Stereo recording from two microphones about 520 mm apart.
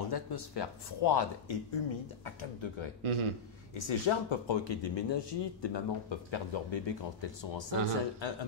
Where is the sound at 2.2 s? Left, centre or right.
Left.